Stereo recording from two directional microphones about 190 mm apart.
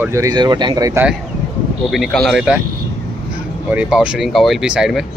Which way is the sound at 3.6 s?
5° right (ahead or behind).